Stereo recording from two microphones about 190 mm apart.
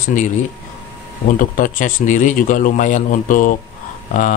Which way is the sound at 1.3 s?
45° left (ahead or behind).